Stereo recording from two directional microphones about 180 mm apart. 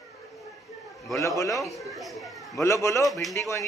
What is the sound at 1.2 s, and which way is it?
Speech, 20° left (ahead or behind).